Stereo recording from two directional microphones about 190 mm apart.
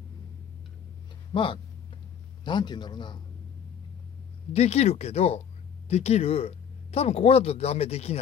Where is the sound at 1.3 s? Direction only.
25° left (ahead or behind).